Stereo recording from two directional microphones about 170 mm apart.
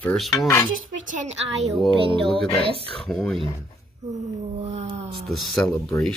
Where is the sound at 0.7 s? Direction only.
50° right (ahead or behind).